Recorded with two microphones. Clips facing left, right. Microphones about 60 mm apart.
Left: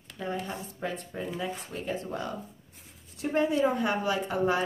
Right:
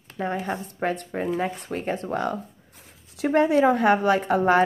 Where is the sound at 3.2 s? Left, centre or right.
Right.